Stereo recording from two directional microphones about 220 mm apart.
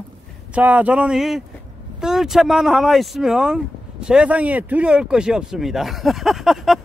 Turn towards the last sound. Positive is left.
turn(degrees=0)  # may be behind; listen again after turning